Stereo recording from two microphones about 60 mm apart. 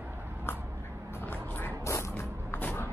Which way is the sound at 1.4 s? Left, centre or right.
Left.